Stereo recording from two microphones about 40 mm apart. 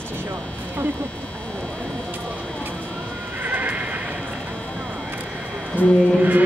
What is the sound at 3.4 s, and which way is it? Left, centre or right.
Horse, right.